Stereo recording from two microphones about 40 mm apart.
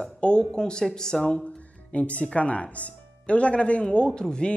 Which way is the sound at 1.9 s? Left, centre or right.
Left.